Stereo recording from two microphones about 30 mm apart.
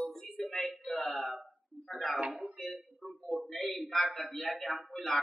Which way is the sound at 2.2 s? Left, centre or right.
Right.